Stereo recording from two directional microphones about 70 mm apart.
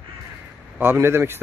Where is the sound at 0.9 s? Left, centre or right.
Right.